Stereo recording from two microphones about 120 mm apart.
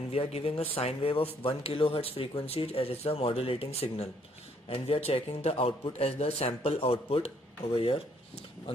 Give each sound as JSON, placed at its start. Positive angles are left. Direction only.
{"t": 0.1, "sound": "a man's voice", "side_deg": 55}